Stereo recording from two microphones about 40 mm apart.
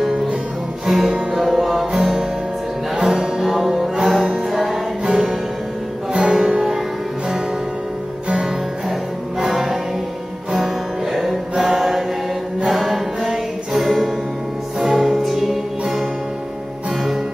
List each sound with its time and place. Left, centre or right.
0.8 s music: centre
1.9 s music: centre
3.4 s music: centre
4.5 s music: centre
8.3 s music: centre
9.4 s music: centre
16.9 s music: centre